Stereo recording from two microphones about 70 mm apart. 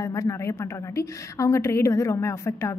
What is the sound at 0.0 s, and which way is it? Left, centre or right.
A woman's voice, left.